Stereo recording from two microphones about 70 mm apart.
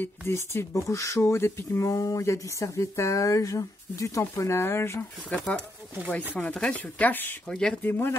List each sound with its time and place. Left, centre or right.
0.0 s speech: left
4.2 s speech: left
5.3 s speech: centre
7.4 s speech: centre
7.8 s speech: left